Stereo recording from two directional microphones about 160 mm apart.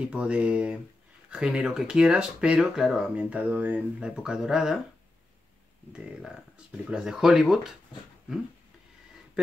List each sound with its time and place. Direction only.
0.0 s speech: 5° right (ahead or behind)
6.8 s speech: 5° right (ahead or behind)